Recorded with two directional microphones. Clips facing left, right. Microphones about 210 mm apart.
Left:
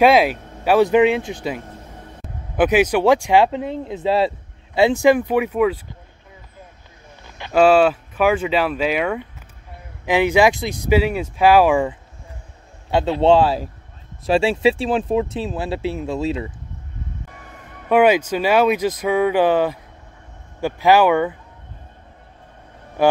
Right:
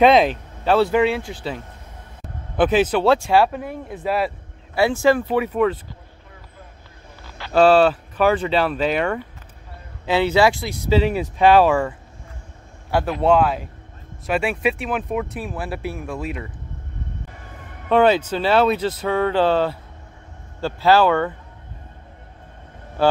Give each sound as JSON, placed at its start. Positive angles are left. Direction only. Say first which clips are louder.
{"t": 0.0, "sound": "speech", "louder": "even", "side_deg": 5}
{"t": 7.2, "sound": "a sound", "louder": "even", "side_deg": 20}
{"t": 7.6, "sound": "speech", "louder": "even", "side_deg": 0}
{"t": 17.8, "sound": "speech", "louder": "left 1 dB", "side_deg": 10}
{"t": 23.0, "sound": "speech", "louder": "left 2 dB", "side_deg": 15}